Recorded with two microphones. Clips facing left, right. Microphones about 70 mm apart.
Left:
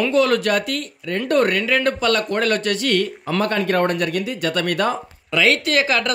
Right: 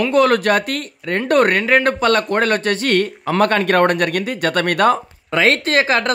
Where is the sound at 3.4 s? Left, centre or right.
Right.